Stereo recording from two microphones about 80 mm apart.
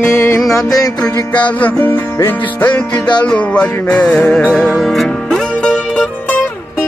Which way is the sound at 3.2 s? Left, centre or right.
Centre.